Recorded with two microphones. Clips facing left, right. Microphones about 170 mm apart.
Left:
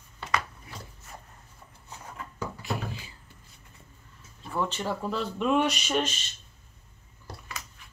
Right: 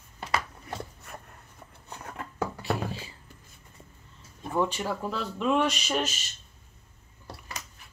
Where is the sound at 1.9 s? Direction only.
65° right (ahead or behind).